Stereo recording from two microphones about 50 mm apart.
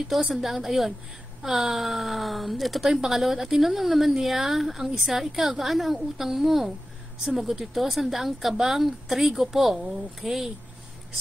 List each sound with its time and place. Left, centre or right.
0.1 s speech: centre